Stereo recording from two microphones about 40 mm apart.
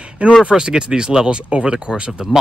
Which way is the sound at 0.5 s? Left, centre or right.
Right.